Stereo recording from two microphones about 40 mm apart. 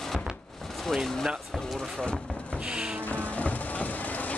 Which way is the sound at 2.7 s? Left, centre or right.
Right.